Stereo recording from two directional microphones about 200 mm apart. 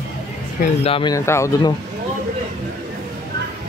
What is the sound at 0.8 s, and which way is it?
Speech, 25° left (ahead or behind).